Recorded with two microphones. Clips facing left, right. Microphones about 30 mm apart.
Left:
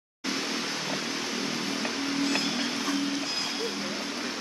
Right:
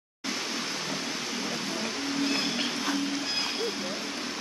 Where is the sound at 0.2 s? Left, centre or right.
Centre.